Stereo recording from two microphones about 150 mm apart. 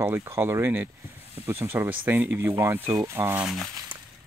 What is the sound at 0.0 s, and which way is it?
Speech, 15° right (ahead or behind).